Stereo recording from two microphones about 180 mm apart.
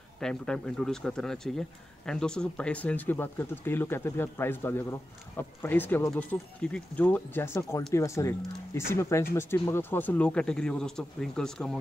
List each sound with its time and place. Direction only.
0.2 s speech: 5° left (ahead or behind)